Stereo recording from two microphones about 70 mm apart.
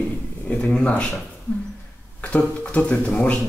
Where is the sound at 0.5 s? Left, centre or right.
Centre.